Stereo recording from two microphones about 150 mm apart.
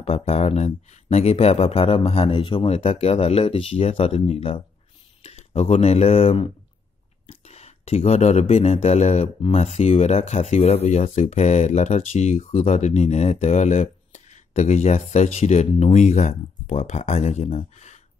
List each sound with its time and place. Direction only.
0.0 s speech: 40° left (ahead or behind)